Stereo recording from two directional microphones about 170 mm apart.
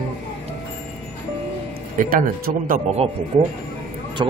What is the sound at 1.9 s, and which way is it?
Speech, 55° right (ahead or behind).